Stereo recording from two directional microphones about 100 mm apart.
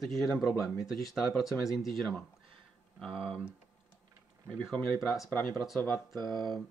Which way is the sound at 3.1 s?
65° right (ahead or behind).